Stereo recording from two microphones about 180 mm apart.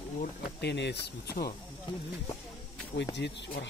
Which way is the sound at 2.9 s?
75° left (ahead or behind).